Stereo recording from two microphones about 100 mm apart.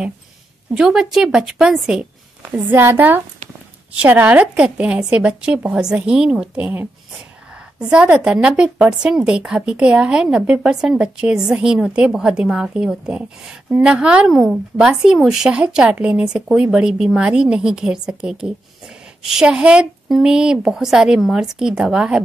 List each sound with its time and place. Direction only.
0.7 s a woman's voice: 5° right (ahead or behind)
2.4 s a woman's voice: 20° right (ahead or behind)